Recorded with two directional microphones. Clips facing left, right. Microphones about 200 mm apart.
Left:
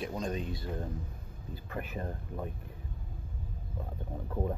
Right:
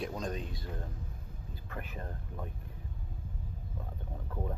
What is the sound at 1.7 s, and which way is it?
Speech, 10° left (ahead or behind).